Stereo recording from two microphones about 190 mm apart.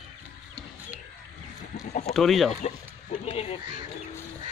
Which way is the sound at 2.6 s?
35° left (ahead or behind).